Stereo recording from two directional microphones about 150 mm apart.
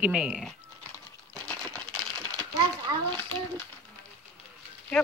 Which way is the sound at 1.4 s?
5° left (ahead or behind).